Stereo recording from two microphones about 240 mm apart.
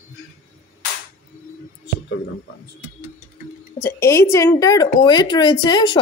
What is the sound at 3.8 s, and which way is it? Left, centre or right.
A woman's voice, centre.